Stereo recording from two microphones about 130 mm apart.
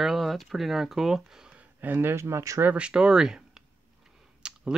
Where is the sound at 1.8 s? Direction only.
15° right (ahead or behind).